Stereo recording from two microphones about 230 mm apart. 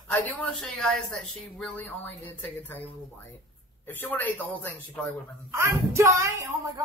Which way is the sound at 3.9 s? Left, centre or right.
Centre.